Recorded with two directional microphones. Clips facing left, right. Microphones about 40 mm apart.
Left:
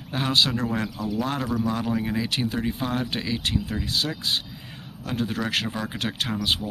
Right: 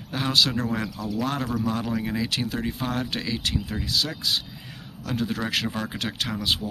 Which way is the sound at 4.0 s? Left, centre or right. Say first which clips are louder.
Right 1 dB; left.